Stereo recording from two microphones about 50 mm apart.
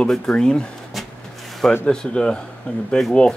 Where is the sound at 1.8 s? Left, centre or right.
Centre.